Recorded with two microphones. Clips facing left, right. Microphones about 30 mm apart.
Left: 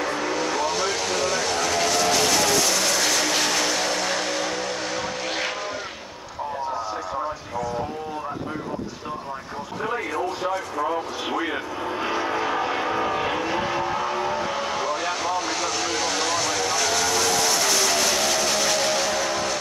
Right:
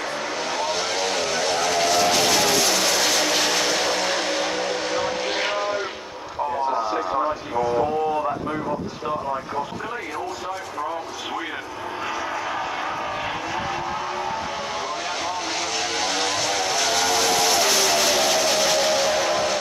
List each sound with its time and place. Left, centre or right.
0.5 s vehicle: centre
10.8 s vehicle: centre
12.1 s vehicle: centre
12.5 s vehicle: centre
14.9 s vehicle: centre